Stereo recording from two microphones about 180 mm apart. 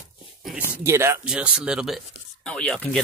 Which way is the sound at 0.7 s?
15° right (ahead or behind).